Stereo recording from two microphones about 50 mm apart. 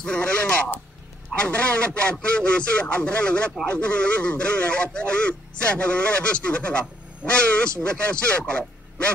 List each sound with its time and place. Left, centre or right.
0.0 s speech: centre